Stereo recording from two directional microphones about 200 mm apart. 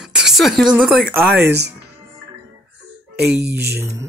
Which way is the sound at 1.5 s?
55° right (ahead or behind).